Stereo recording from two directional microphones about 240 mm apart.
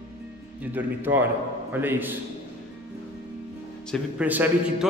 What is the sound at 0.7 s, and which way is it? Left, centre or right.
A man's voice, centre.